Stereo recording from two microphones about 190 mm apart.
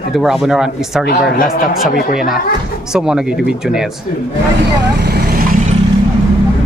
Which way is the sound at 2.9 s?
5° right (ahead or behind).